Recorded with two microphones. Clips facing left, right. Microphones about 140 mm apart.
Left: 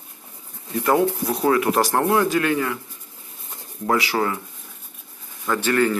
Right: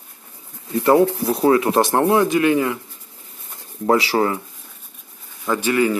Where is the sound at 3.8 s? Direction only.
30° right (ahead or behind).